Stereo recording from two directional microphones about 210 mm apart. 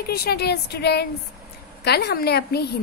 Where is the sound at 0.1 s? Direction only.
50° left (ahead or behind).